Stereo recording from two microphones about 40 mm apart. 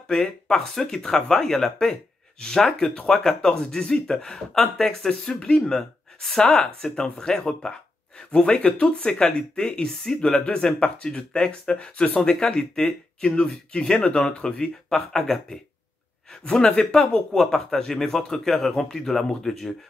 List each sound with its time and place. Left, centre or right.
0.1 s a man's voice: centre
12.2 s a man's voice: centre
14.9 s a man's voice: centre